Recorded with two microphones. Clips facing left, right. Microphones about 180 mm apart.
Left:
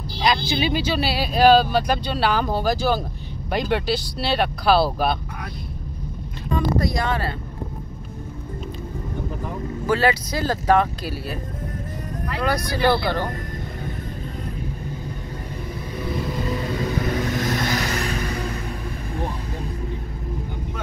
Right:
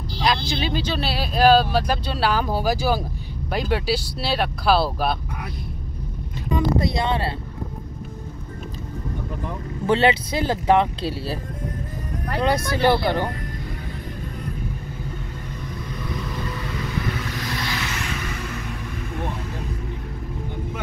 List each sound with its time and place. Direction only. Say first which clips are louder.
0.2 s vehicle: left 1 dB; centre (ahead or behind)
0.6 s speech: left 3 dB; 10° left (ahead or behind)
6.5 s speech: right 1 dB; 25° right (ahead or behind)
9.8 s speech: right 2 dB; 25° right (ahead or behind)
12.4 s speech: right 2 dB; 25° right (ahead or behind)
16.4 s vehicle: left 5 dB; 35° left (ahead or behind)